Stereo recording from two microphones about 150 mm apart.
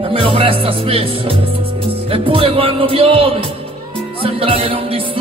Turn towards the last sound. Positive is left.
turn(degrees=-40)  # may be behind; listen again after turning